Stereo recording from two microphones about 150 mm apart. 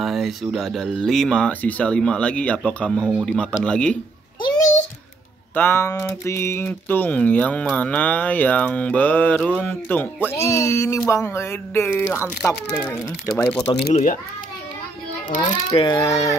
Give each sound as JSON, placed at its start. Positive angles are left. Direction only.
{"t": 0.0, "sound": "speech", "side_deg": 0}
{"t": 5.5, "sound": "speech", "side_deg": 15}
{"t": 15.2, "sound": "a child's voice", "side_deg": 60}
{"t": 15.7, "sound": "a child's voice", "side_deg": 35}
{"t": 16.0, "sound": "speech", "side_deg": 20}